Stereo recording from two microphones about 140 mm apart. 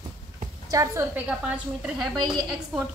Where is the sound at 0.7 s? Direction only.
20° right (ahead or behind).